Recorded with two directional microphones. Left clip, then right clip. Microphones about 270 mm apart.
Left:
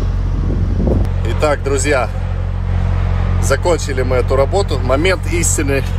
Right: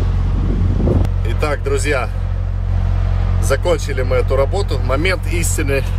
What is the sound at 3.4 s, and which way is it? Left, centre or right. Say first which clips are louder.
Speech: left 2 dB; centre.